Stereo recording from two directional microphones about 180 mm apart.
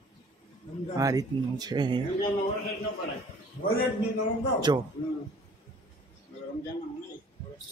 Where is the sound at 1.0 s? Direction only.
20° right (ahead or behind).